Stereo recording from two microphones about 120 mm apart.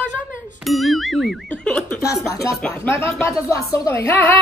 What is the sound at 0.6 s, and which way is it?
Music, centre (ahead or behind).